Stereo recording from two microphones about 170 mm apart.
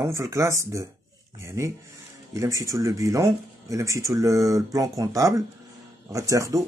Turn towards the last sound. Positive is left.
turn(degrees=-20)  # may be behind; listen again after turning